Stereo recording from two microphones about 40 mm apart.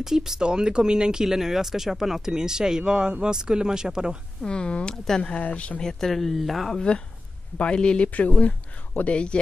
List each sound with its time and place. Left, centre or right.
0.0 s speech: centre
1.2 s speech: centre
4.4 s speech: left
5.8 s speech: centre
7.5 s speech: left
8.1 s speech: left